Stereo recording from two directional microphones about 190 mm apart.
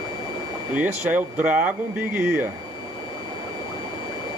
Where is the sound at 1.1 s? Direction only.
5° right (ahead or behind).